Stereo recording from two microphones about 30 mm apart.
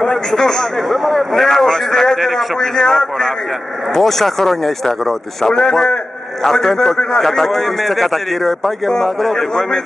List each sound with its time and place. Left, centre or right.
0.0 s a sound: centre
0.8 s a man's voice: centre
1.3 s speech: centre
7.0 s a man's voice: left
7.2 s a man's voice: centre